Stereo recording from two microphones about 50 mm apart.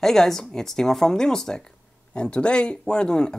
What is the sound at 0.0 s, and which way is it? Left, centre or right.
Speech, centre.